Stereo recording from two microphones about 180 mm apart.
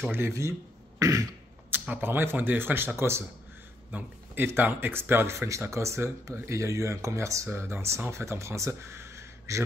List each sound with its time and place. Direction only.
0.0 s speech: 10° right (ahead or behind)